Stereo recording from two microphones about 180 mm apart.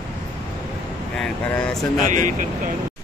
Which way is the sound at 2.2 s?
45° right (ahead or behind).